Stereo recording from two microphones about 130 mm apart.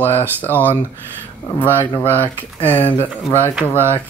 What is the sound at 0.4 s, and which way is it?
Speech, 15° left (ahead or behind).